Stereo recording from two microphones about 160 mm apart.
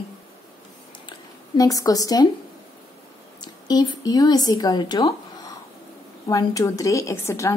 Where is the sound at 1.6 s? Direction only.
20° left (ahead or behind).